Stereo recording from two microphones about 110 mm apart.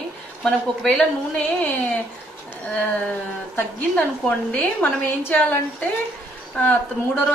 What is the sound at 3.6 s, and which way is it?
A woman's voice, 15° left (ahead or behind).